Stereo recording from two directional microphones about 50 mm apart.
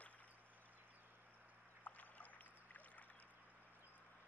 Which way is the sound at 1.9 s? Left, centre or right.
Left.